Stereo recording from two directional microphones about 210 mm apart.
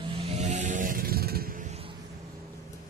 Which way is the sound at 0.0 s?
25° right (ahead or behind).